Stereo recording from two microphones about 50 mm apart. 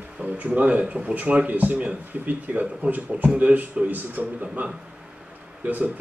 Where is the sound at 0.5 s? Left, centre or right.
Right.